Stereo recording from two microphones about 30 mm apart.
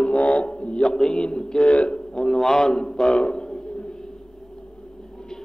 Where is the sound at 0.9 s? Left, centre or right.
Left.